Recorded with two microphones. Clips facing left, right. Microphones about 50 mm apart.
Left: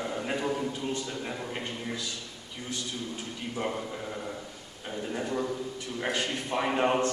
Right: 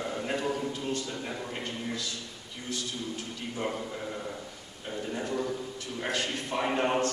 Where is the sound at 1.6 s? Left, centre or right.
Centre.